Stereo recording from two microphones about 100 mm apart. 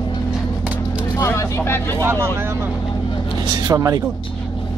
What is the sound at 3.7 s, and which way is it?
Speech, 35° right (ahead or behind).